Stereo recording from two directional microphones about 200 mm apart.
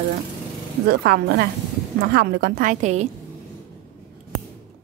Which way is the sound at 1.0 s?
50° right (ahead or behind).